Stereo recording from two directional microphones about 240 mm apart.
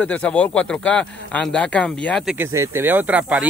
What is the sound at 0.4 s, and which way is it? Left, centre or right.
Speech, centre.